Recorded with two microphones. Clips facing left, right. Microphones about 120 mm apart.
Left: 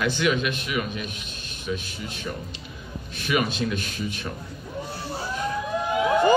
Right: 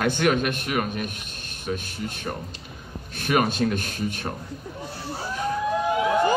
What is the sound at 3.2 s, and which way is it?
A man's voice, 50° right (ahead or behind).